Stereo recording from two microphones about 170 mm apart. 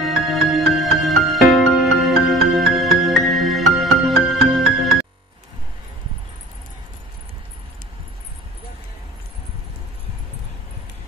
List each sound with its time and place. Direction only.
0.0 s music: centre (ahead or behind)